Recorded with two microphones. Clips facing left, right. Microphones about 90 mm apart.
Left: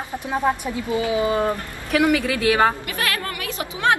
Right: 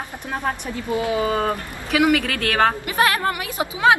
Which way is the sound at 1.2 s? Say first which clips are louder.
Left 1 dB; 5° left (ahead or behind).